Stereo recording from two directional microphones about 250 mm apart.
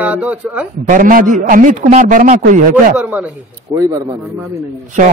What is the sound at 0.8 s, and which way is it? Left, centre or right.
A man's voice, right.